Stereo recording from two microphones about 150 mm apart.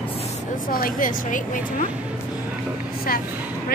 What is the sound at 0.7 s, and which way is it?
A woman's voice, 70° left (ahead or behind).